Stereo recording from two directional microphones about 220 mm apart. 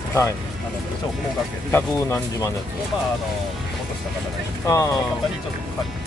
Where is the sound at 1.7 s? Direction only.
10° left (ahead or behind).